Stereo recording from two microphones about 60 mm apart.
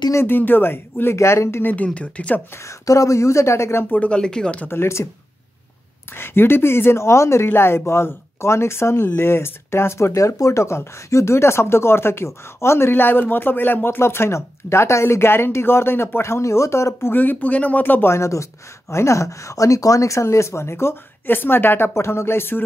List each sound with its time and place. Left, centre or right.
0.3 s speech: left
1.1 s speech: left
1.6 s speech: left
2.9 s speech: left
3.9 s speech: left
4.6 s speech: left
6.1 s speech: left
12.9 s speech: left
17.1 s speech: left
18.1 s speech: left